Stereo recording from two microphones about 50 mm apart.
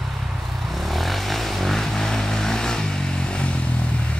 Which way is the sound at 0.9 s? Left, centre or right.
Centre.